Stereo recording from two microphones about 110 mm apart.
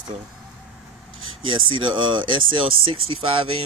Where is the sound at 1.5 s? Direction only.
50° right (ahead or behind).